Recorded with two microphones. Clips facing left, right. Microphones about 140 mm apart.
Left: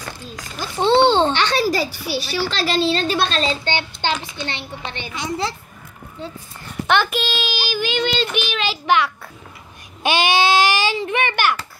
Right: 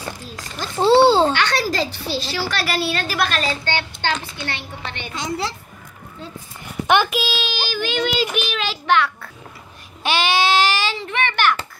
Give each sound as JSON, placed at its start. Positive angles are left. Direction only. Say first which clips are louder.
{"t": 0.0, "sound": "a child's voice", "louder": "right 1 dB", "side_deg": 0}
{"t": 1.5, "sound": "speech", "louder": "left 2 dB", "side_deg": 15}
{"t": 2.0, "sound": "a woman's voice", "louder": "even", "side_deg": -20}
{"t": 2.5, "sound": "a child's voice", "louder": "left 4 dB", "side_deg": 25}
{"t": 6.6, "sound": "a sound", "louder": "right 1 dB", "side_deg": -15}
{"t": 7.1, "sound": "a child's voice", "louder": "even", "side_deg": 0}